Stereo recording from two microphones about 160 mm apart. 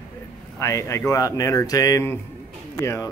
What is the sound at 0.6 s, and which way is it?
A man's voice, 15° left (ahead or behind).